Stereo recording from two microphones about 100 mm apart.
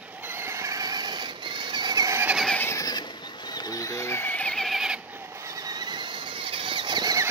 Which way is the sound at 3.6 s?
40° left (ahead or behind).